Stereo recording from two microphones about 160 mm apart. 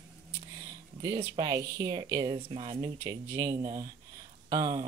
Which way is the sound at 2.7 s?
20° right (ahead or behind).